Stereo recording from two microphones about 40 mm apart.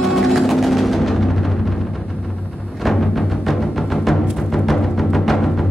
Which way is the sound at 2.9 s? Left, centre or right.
Centre.